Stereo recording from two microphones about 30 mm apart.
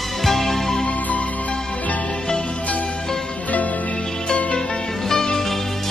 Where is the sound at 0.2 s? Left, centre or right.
Centre.